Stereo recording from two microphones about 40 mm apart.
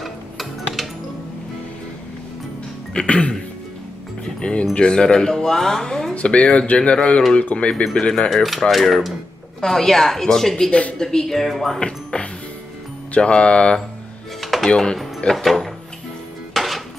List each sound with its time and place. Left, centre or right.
0.0 s music: centre
2.9 s speech: left
4.4 s speech: left; by 6.1 s centre
6.2 s speech: left
8.1 s speech: centre
9.6 s speech: centre
10.7 s a woman's voice: left
11.0 s speech: centre
11.8 s speech: left
14.4 s a sound: centre
15.3 s speech: centre
16.5 s music: centre